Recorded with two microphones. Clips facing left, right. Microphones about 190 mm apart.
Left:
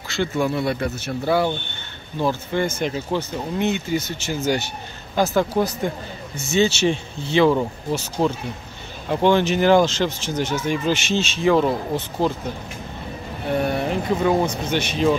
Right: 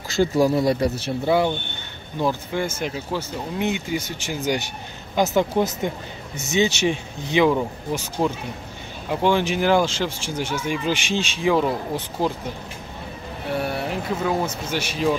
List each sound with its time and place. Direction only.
0.1 s speech: 40° right (ahead or behind)
1.2 s speech: 20° right (ahead or behind)
13.6 s a man's voice: 5° right (ahead or behind)